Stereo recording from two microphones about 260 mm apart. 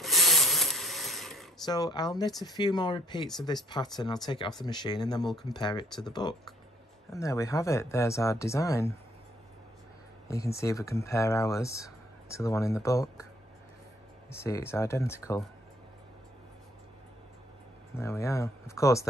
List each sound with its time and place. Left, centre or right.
0.0 s a sound: centre
1.7 s speech: centre
10.2 s speech: centre
14.3 s speech: centre
17.9 s speech: centre